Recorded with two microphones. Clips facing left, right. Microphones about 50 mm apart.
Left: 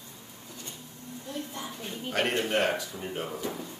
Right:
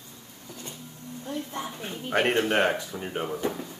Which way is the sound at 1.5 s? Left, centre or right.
Right.